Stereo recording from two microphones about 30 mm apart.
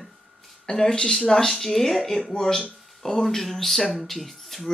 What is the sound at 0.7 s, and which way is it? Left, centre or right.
Speech, left.